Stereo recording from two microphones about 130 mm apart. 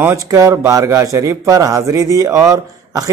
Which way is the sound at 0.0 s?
20° right (ahead or behind).